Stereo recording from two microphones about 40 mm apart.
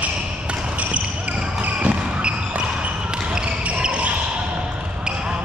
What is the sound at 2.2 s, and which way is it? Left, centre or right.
Basketball bounce, right.